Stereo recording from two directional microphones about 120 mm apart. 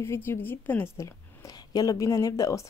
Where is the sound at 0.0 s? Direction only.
20° left (ahead or behind).